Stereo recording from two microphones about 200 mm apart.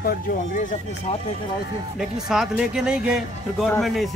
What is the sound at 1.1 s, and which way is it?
Speech, 30° left (ahead or behind).